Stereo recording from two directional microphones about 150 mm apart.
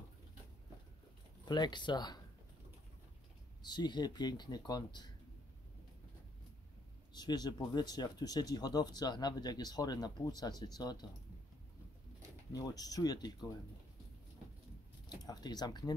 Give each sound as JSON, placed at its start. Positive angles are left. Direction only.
{"t": 1.4, "sound": "speech", "side_deg": 30}
{"t": 3.6, "sound": "speech", "side_deg": 30}
{"t": 7.2, "sound": "speech", "side_deg": 25}
{"t": 12.5, "sound": "speech", "side_deg": 25}
{"t": 15.0, "sound": "speech", "side_deg": 25}